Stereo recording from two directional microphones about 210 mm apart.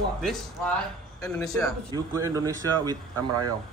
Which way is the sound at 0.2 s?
Centre (ahead or behind).